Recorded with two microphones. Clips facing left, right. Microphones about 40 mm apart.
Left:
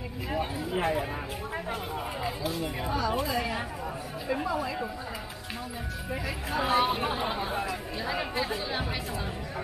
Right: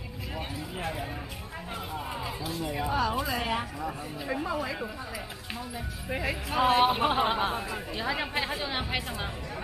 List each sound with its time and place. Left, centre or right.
0.7 s speech: left
2.9 s speech: right
3.3 s speech: right
6.1 s speech: right
6.6 s speech: right